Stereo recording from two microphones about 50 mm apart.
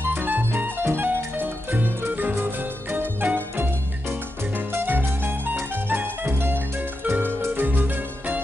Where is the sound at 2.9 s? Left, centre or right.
Right.